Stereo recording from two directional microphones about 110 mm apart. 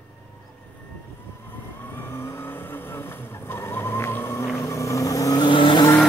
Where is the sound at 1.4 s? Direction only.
20° left (ahead or behind); by 5.8 s 45° left (ahead or behind).